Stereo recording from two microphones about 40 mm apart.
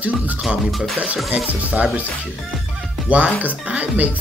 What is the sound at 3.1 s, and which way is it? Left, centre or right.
Speech, right.